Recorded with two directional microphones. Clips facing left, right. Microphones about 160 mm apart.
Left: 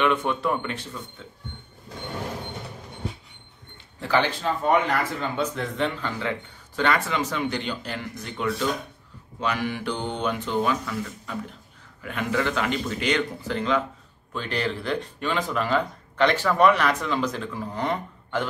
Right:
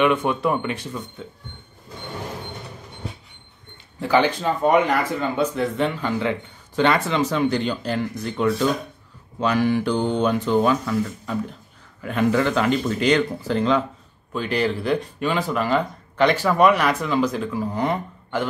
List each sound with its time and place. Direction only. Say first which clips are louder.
0.0 s speech: right 4 dB; 15° right (ahead or behind)
4.0 s speech: right 4 dB; 15° right (ahead or behind); by 13.7 s 35° right (ahead or behind)
14.3 s speech: right 5 dB; 10° right (ahead or behind)